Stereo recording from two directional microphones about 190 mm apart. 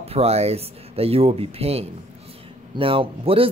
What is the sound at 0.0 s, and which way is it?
A man's voice, 30° right (ahead or behind).